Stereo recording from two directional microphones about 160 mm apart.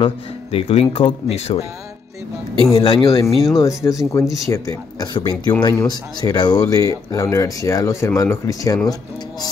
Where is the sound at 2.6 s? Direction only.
25° left (ahead or behind).